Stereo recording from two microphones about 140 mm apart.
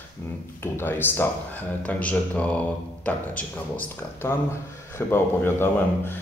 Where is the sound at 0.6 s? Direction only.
15° left (ahead or behind).